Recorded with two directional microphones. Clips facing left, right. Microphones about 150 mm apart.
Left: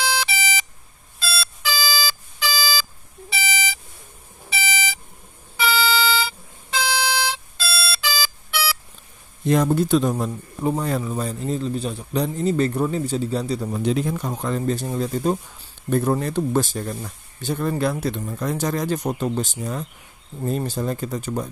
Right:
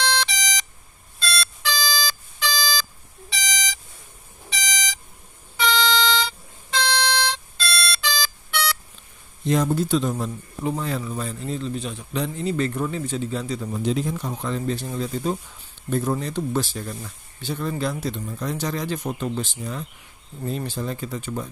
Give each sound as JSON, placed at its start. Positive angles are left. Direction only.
{"t": 0.0, "sound": "beep", "side_deg": 5}
{"t": 5.6, "sound": "a sound", "side_deg": 5}
{"t": 9.5, "sound": "speech", "side_deg": 55}
{"t": 13.7, "sound": "speech", "side_deg": 60}